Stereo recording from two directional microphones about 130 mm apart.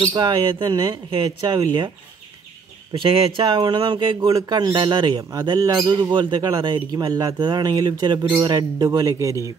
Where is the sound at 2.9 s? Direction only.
40° right (ahead or behind).